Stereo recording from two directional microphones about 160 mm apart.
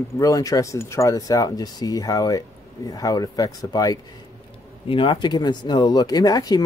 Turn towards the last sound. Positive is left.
turn(degrees=25)  # may be behind; listen again after turning